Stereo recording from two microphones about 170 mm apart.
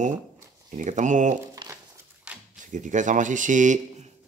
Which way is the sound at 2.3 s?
5° right (ahead or behind).